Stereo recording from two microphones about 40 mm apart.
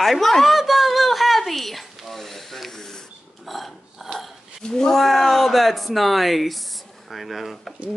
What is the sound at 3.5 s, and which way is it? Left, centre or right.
Filing, centre.